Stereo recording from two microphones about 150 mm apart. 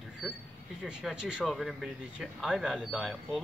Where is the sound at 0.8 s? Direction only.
5° right (ahead or behind).